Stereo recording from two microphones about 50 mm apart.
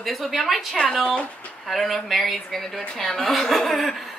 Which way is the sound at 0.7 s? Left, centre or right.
Centre.